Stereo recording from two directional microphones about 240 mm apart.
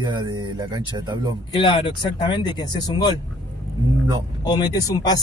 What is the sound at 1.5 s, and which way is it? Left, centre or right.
Speech, centre.